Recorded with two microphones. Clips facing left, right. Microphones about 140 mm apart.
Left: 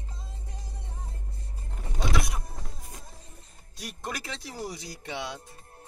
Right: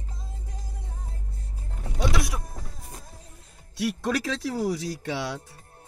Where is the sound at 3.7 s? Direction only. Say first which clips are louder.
Right 11 dB; 90° right.